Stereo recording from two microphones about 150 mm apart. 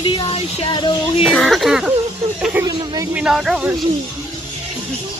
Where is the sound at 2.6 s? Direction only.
25° right (ahead or behind).